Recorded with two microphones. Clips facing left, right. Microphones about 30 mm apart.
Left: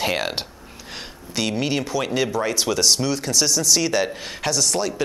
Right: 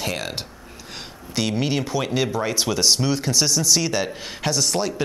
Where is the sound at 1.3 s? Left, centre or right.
Centre.